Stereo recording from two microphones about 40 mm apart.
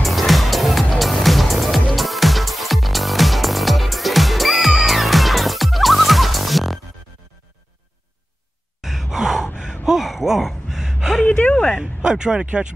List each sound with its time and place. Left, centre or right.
0.0 s music: centre
8.8 s sigh: centre
9.8 s gasp: centre
11.2 s a sound: left
11.8 s speech: centre